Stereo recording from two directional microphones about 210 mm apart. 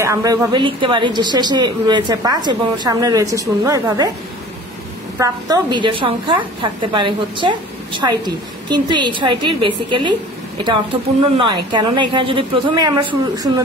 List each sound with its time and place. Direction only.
0.0 s a woman's voice: 15° right (ahead or behind)
5.2 s a woman's voice: 20° right (ahead or behind)
11.3 s a woman's voice: 20° right (ahead or behind)